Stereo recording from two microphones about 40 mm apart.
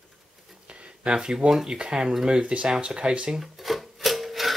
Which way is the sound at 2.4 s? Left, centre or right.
Right.